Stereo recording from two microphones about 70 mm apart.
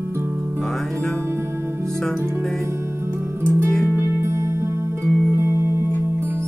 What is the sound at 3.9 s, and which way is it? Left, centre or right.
Music, right.